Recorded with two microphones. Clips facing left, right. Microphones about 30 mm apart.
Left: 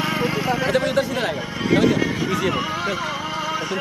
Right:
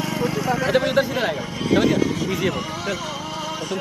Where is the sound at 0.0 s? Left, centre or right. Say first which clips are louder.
Left 2 dB; left.